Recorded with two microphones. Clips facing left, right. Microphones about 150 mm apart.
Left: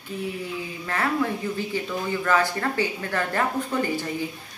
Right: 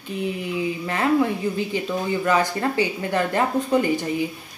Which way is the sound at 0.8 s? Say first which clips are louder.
Right 4 dB; 20° right (ahead or behind).